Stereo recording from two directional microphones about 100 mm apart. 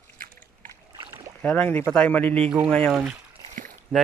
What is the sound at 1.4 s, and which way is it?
Speech, 15° left (ahead or behind).